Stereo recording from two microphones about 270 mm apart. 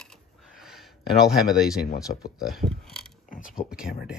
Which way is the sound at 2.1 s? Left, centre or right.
Left.